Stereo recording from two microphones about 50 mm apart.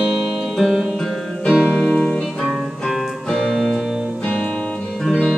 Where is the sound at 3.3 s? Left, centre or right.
Centre.